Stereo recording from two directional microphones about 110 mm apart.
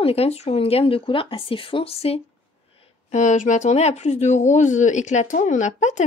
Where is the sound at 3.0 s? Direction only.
90° left.